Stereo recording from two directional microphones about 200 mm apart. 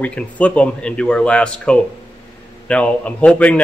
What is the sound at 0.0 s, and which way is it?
Speech, 5° left (ahead or behind).